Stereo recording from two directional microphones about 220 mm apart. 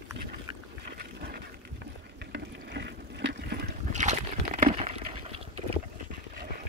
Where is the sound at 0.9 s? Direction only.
45° right (ahead or behind).